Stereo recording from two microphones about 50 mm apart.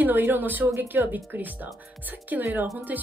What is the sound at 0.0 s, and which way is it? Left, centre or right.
Speech, right.